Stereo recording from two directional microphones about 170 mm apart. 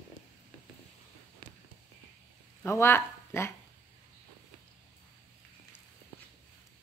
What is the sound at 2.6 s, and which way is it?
Speech, 15° left (ahead or behind).